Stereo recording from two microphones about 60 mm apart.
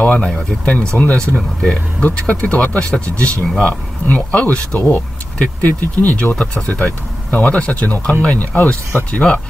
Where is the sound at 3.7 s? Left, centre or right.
Left.